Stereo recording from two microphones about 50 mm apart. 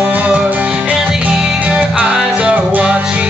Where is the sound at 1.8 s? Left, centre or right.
Right.